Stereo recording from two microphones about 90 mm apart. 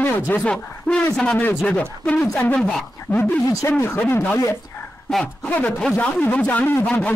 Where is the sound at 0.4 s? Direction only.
10° left (ahead or behind).